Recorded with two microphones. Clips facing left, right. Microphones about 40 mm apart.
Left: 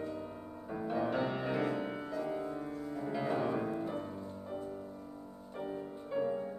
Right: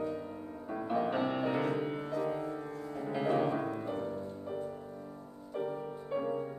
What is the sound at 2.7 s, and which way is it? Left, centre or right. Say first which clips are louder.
Music: even; right.